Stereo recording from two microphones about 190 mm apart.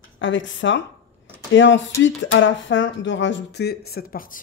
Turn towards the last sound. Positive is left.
turn(degrees=50)  # may be behind; listen again after turning